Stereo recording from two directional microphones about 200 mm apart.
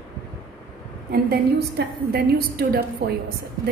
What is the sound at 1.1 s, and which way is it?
A woman's voice, 55° right (ahead or behind).